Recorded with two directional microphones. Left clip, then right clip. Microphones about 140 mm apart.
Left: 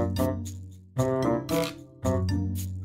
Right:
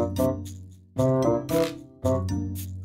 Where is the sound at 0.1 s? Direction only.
30° left (ahead or behind).